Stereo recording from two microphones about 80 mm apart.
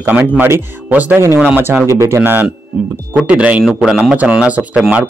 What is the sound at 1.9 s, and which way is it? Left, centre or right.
Speech, right.